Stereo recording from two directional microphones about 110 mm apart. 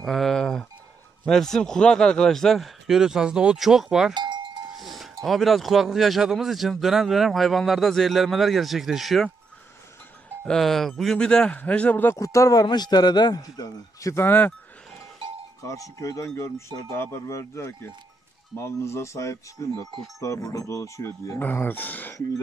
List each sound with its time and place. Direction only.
0.0 s a sound: centre (ahead or behind)
1.2 s speech: 5° left (ahead or behind)
4.1 s speech: 45° right (ahead or behind)
4.7 s speech: centre (ahead or behind)
10.4 s a man's voice: 5° left (ahead or behind)
12.2 s a man's voice: 30° left (ahead or behind)
14.1 s speech: 20° left (ahead or behind)
15.6 s speech: 30° left (ahead or behind)